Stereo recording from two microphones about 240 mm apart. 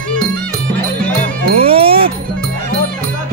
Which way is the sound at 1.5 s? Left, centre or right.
Right.